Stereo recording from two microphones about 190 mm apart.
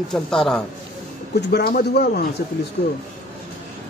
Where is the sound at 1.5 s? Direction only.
55° left (ahead or behind).